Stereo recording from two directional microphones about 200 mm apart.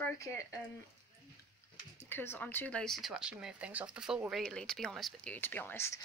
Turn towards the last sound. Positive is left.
turn(degrees=10)  # may be behind; listen again after turning